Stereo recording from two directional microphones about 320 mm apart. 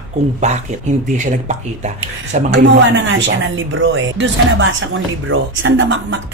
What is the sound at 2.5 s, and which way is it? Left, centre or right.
Speech, right.